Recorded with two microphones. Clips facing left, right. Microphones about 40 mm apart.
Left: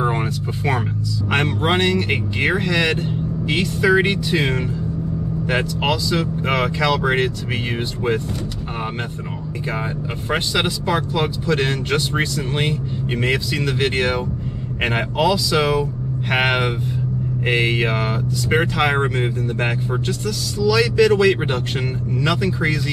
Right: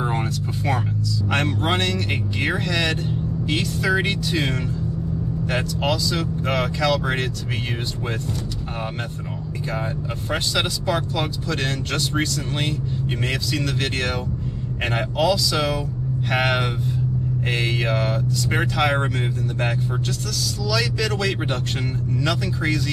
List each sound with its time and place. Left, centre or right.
0.0 s music: centre
1.3 s speech: centre
10.3 s speech: centre